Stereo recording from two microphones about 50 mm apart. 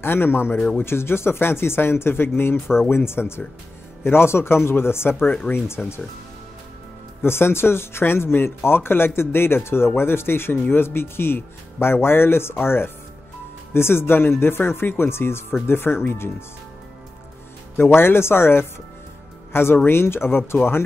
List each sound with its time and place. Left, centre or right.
0.0 s speech: left
5.8 s speech: centre
7.2 s speech: left
17.7 s speech: left